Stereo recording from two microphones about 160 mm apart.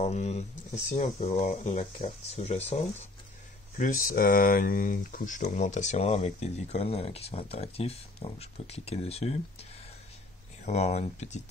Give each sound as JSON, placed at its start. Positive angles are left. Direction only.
{"t": 0.0, "sound": "speech", "side_deg": 45}
{"t": 3.7, "sound": "speech", "side_deg": 55}